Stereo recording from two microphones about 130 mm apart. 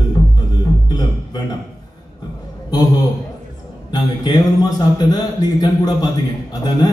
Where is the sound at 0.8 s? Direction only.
30° left (ahead or behind).